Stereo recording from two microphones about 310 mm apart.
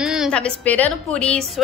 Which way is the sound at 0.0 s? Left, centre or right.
Centre.